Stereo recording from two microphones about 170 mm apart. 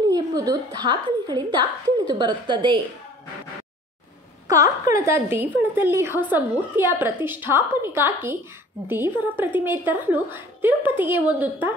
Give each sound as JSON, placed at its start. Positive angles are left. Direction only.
{"t": 0.1, "sound": "a woman's voice", "side_deg": -20}
{"t": 4.5, "sound": "a woman's voice", "side_deg": -20}